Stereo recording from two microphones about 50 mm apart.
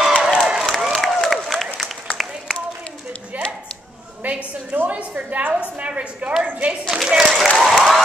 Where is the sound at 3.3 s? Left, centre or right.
Right.